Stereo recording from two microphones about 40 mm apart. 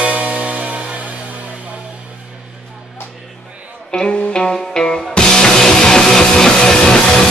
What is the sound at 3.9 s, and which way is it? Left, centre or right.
Music, centre.